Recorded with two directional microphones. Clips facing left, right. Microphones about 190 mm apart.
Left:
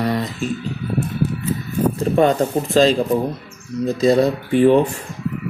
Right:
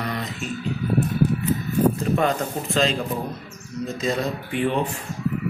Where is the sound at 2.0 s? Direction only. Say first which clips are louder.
Left 6 dB; 35° left (ahead or behind).